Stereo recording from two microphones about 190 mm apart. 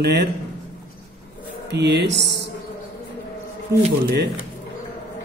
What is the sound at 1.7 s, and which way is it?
Speech, 65° right (ahead or behind).